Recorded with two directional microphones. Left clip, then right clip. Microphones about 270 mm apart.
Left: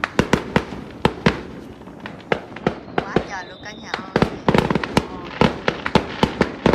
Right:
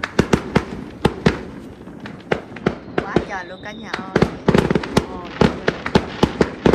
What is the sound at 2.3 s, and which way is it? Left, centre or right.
Fireworks, left.